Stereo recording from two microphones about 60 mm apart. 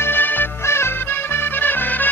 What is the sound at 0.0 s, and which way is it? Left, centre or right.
Music, left.